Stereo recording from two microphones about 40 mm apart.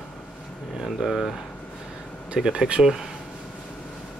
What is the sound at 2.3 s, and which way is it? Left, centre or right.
Speech, centre.